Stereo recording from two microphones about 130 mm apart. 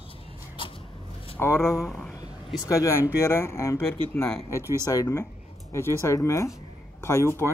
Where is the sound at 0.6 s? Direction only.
40° left (ahead or behind).